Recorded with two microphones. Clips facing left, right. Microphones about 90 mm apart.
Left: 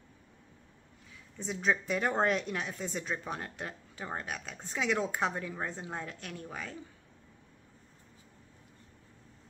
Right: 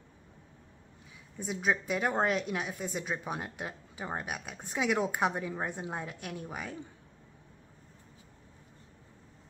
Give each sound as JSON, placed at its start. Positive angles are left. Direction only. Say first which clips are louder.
{"t": 1.4, "sound": "a woman's voice", "louder": "even", "side_deg": -10}